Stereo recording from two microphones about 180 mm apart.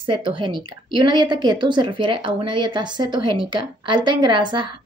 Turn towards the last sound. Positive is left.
turn(degrees=-25)  # may be behind; listen again after turning